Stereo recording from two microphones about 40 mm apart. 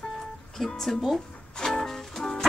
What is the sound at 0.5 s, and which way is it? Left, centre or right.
Speech, centre.